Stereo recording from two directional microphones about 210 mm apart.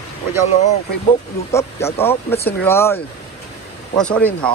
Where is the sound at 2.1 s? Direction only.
10° left (ahead or behind).